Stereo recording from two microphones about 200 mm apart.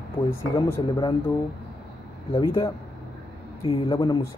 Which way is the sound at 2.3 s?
25° left (ahead or behind).